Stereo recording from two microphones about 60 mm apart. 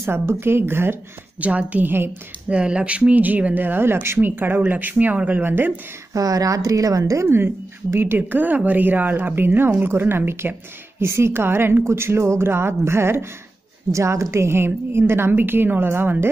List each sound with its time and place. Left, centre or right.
0.0 s a woman's voice: right
1.4 s speech: right
4.4 s speech: right
5.4 s a woman's voice: right
6.1 s speech: right
7.2 s a woman's voice: right